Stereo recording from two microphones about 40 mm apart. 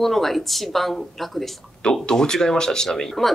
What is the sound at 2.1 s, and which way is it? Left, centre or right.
Speech, centre.